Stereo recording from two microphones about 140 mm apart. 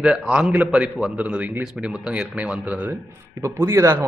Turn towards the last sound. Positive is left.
turn(degrees=-20)  # may be behind; listen again after turning